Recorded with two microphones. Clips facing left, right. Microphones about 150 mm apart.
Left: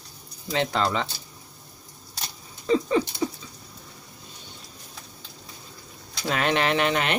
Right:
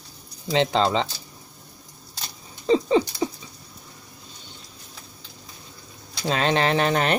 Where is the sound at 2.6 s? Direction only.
25° right (ahead or behind).